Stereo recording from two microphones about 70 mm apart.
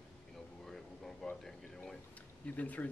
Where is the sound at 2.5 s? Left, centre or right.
Left.